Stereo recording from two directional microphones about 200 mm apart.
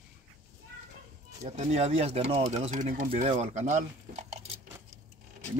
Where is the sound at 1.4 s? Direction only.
35° right (ahead or behind).